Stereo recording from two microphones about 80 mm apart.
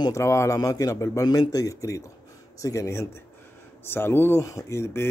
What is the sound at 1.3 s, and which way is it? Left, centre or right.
A man's voice, left.